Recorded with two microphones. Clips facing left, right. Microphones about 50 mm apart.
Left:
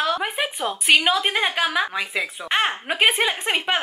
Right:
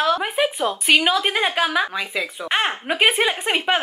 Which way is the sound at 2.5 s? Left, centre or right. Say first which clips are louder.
Right 1 dB; centre.